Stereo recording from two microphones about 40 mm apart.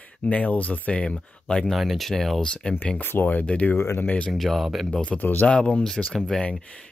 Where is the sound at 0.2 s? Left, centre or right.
Left.